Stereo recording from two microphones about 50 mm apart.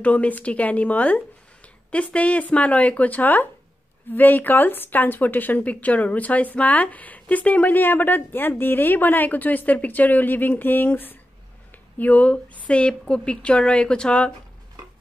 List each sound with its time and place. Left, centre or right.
0.0 s speech: left
12.0 s speech: left